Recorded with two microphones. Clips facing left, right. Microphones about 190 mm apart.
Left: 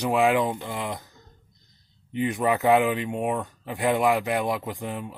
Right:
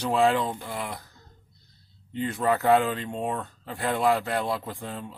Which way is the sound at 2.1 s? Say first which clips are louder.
Left 2 dB; 15° left (ahead or behind).